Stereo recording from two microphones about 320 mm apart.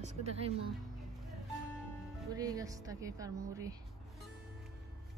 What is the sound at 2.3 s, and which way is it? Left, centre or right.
Speech, centre.